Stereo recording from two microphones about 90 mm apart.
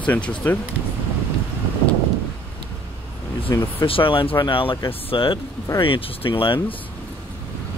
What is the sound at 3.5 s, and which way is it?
Speech, 45° left (ahead or behind).